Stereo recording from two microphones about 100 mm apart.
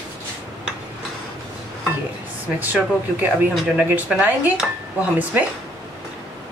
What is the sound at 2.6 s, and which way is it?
Speech, 15° right (ahead or behind).